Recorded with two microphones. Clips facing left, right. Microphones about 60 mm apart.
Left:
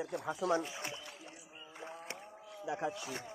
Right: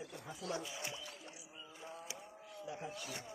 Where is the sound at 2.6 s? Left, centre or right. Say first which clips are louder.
Left 8 dB; left.